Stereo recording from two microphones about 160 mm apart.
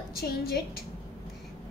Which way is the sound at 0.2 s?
75° left (ahead or behind).